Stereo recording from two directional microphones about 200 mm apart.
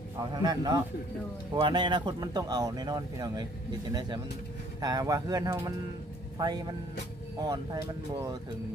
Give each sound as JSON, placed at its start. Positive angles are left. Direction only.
{"t": 0.4, "sound": "speech", "side_deg": -20}